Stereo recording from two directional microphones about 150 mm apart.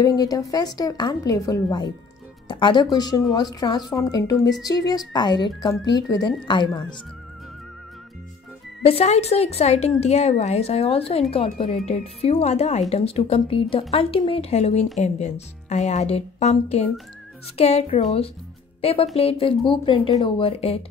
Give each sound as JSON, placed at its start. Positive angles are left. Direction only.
{"t": 0.0, "sound": "a woman's voice", "side_deg": 25}
{"t": 8.8, "sound": "a woman's voice", "side_deg": 45}